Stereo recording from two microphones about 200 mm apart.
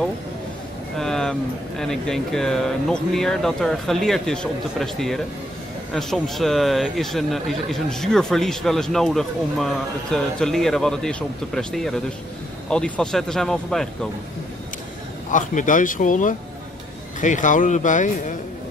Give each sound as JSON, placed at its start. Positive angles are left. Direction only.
{"t": 0.9, "sound": "vehicle", "side_deg": 0}
{"t": 1.8, "sound": "speech", "side_deg": 0}
{"t": 15.3, "sound": "speech", "side_deg": 40}